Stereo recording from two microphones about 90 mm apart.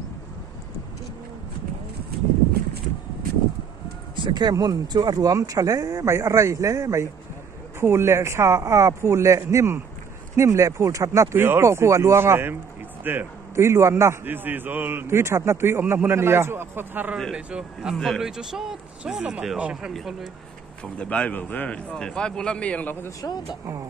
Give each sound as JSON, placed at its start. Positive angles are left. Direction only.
{"t": 4.2, "sound": "a man's voice", "side_deg": -55}
{"t": 14.2, "sound": "a man's voice", "side_deg": -20}
{"t": 17.3, "sound": "a man's voice", "side_deg": -10}
{"t": 17.9, "sound": "a man's voice", "side_deg": 0}
{"t": 19.9, "sound": "a man's voice", "side_deg": 0}
{"t": 20.8, "sound": "a man's voice", "side_deg": 15}
{"t": 23.0, "sound": "speech", "side_deg": 45}